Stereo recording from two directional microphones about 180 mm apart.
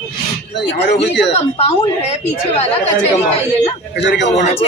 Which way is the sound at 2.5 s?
35° left (ahead or behind).